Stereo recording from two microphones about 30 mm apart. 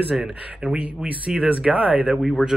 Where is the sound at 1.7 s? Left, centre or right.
Right.